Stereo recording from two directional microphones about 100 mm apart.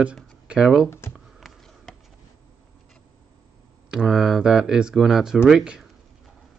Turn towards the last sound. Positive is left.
turn(degrees=-5)  # may be behind; listen again after turning